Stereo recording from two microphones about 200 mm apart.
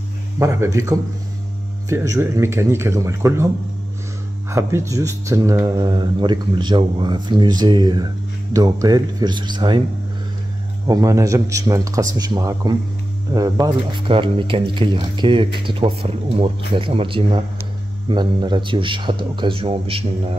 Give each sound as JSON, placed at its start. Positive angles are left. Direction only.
{"t": 0.4, "sound": "speech", "side_deg": -15}
{"t": 4.5, "sound": "speech", "side_deg": -15}
{"t": 10.9, "sound": "speech", "side_deg": -15}